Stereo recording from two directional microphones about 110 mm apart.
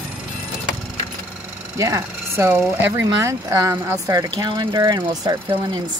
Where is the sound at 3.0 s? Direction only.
30° right (ahead or behind).